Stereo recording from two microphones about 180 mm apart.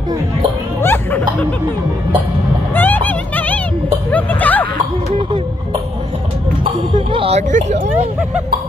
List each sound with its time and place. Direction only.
0.8 s speech: 10° left (ahead or behind)
2.7 s music: 10° left (ahead or behind)
4.1 s speech: 10° left (ahead or behind)
6.6 s speech: 30° right (ahead or behind)